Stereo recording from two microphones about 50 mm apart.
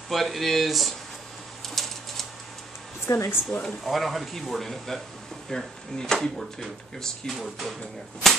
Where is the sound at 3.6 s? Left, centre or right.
Centre.